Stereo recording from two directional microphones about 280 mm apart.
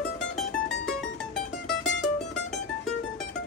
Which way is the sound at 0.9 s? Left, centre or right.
Centre.